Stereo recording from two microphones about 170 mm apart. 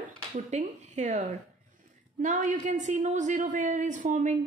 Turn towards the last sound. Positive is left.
turn(degrees=-50)  # may be behind; listen again after turning